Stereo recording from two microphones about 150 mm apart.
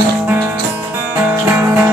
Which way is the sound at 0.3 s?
15° right (ahead or behind).